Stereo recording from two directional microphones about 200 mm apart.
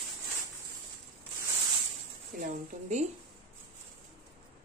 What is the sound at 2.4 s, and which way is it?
Speech, 35° right (ahead or behind).